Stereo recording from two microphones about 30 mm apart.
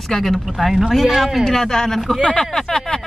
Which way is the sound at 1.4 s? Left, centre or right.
Centre.